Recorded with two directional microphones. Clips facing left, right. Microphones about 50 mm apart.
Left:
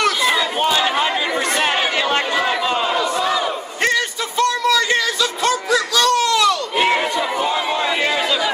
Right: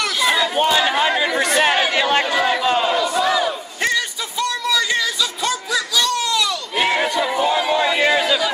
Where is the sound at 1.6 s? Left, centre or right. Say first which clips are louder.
Right 3 dB; centre.